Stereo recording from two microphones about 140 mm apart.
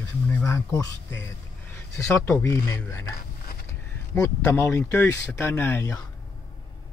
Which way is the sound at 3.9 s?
20° left (ahead or behind).